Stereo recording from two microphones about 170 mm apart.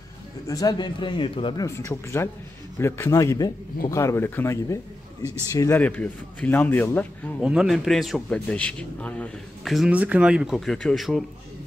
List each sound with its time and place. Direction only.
0.5 s speech: 20° left (ahead or behind)
1.9 s a man's voice: 15° left (ahead or behind)
7.4 s a man's voice: centre (ahead or behind)